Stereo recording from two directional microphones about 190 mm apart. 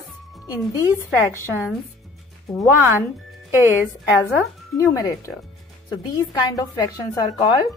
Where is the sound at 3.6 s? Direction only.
10° right (ahead or behind).